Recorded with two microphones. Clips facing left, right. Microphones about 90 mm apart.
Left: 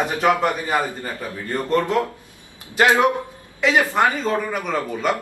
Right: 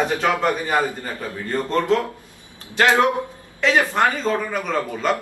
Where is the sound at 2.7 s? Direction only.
15° left (ahead or behind).